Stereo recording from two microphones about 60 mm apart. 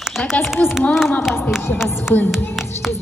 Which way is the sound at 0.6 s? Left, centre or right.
Left.